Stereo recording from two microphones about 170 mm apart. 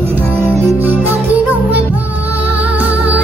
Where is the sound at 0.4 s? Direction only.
10° right (ahead or behind).